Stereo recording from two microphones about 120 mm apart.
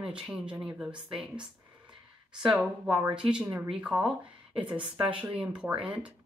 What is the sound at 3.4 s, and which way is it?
Speech, 25° right (ahead or behind).